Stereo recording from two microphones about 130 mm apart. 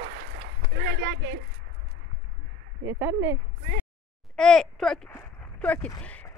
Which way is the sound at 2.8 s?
20° right (ahead or behind).